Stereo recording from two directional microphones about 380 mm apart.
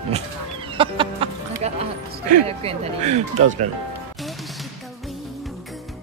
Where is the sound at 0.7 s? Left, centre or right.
Centre.